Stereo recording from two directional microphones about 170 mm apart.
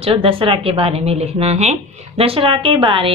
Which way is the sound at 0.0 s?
30° right (ahead or behind).